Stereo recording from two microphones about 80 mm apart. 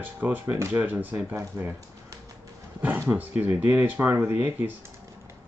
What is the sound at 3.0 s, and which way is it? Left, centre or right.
Speech, right.